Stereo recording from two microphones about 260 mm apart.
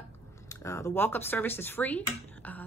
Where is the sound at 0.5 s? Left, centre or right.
Centre.